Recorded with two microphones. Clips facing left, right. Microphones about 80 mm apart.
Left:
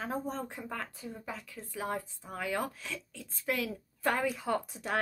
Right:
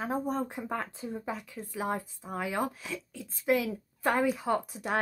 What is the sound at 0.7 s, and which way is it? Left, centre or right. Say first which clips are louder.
Speech: right 5 dB; right.